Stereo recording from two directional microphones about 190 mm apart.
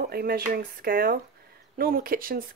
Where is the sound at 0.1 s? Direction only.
50° right (ahead or behind).